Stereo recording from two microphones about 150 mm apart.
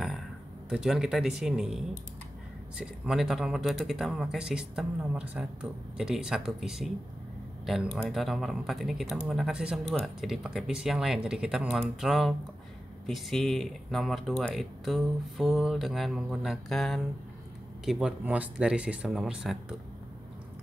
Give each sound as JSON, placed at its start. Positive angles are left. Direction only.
{"t": 0.7, "sound": "speech", "side_deg": 0}
{"t": 2.8, "sound": "speech", "side_deg": 0}